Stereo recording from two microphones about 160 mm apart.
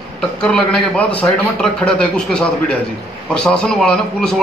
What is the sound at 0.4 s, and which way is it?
A man's voice, 5° left (ahead or behind).